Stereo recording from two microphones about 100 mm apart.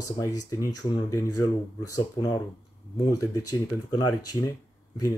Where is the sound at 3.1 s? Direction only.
35° left (ahead or behind).